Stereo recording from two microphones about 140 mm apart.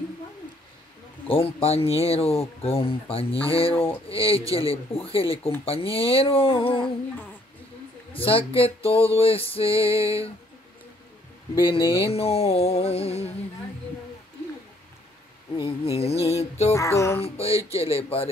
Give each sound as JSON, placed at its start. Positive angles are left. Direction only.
{"t": 1.2, "sound": "speech", "side_deg": 40}
{"t": 5.7, "sound": "male singing", "side_deg": 40}
{"t": 8.1, "sound": "male singing", "side_deg": 40}
{"t": 11.5, "sound": "male singing", "side_deg": 35}
{"t": 11.8, "sound": "speech", "side_deg": -20}
{"t": 12.1, "sound": "speech", "side_deg": 45}
{"t": 15.6, "sound": "speech", "side_deg": 45}
{"t": 16.7, "sound": "music", "side_deg": 20}
{"t": 17.2, "sound": "speech", "side_deg": 45}